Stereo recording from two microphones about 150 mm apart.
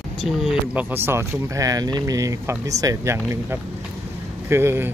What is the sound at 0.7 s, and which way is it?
Speech, 15° right (ahead or behind).